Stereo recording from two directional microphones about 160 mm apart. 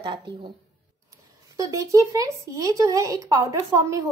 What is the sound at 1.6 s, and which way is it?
Speech, 20° right (ahead or behind).